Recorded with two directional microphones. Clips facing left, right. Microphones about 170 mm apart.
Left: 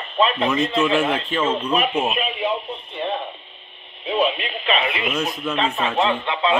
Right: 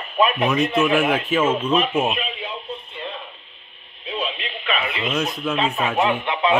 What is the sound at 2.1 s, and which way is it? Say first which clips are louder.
Radio: left 6 dB; 60° left (ahead or behind).